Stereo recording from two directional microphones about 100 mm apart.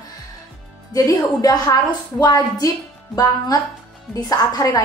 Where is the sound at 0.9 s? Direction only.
35° left (ahead or behind).